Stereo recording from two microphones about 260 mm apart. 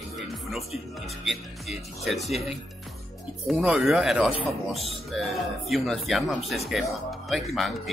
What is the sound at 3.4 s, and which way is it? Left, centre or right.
A man's voice, centre.